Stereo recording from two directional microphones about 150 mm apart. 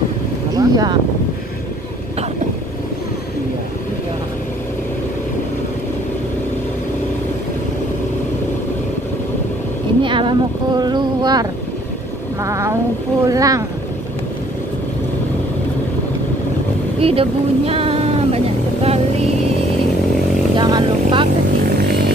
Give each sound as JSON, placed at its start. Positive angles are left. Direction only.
{"t": 0.6, "sound": "speech", "side_deg": -25}
{"t": 10.0, "sound": "speech", "side_deg": -30}
{"t": 12.4, "sound": "speech", "side_deg": -20}
{"t": 17.0, "sound": "vehicle", "side_deg": -40}
{"t": 20.5, "sound": "vehicle", "side_deg": -30}